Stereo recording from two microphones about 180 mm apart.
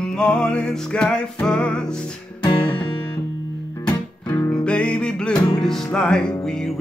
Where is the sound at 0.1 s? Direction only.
5° left (ahead or behind).